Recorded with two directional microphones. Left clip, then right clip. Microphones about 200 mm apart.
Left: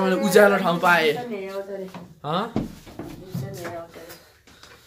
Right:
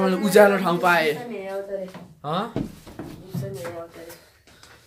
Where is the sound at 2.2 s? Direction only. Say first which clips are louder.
Left 1 dB; 5° left (ahead or behind).